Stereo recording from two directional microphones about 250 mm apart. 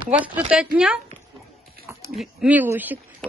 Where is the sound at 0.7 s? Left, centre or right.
Centre.